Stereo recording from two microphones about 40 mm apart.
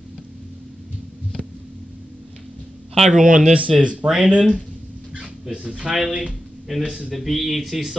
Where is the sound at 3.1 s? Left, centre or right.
Centre.